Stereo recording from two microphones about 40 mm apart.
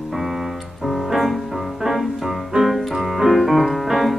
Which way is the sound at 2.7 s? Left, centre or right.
Centre.